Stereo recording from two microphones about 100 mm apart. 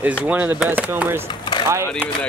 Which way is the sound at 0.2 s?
20° right (ahead or behind).